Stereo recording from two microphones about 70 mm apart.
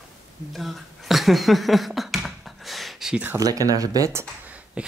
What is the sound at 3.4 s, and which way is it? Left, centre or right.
Speech, right.